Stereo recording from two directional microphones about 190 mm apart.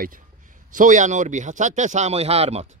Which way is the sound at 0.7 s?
40° right (ahead or behind).